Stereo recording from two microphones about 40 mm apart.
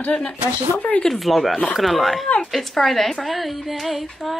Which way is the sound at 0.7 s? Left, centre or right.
Left.